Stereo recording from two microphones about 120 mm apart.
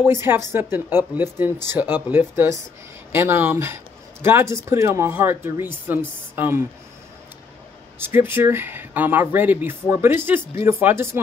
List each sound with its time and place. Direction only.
0.0 s speech: 20° right (ahead or behind)
8.0 s speech: 20° right (ahead or behind)